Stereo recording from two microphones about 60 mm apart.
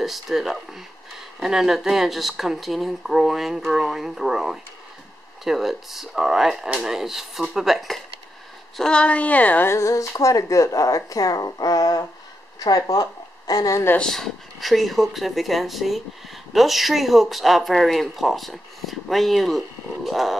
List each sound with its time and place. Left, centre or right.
0.0 s speech: centre
8.7 s a woman's voice: centre
9.7 s a woman's voice: left
14.0 s speech: centre